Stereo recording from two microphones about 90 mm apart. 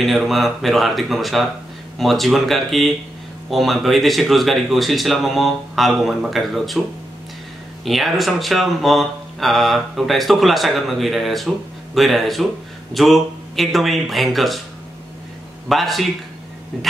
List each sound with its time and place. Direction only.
0.0 s speech: centre (ahead or behind)
7.8 s speech: centre (ahead or behind)
15.7 s speech: centre (ahead or behind)